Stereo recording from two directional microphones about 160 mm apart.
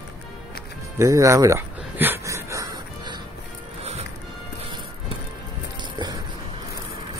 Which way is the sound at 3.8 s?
40° right (ahead or behind).